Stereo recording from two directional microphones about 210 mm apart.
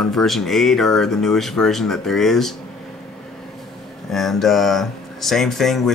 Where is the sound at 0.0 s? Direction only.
Centre (ahead or behind).